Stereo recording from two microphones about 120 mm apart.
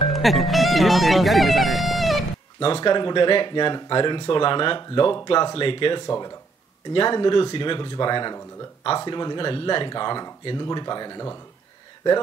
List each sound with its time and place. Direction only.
0.1 s speech: centre (ahead or behind)
2.6 s speech: 45° left (ahead or behind)
6.0 s speech: 30° left (ahead or behind)
6.9 s speech: 45° left (ahead or behind)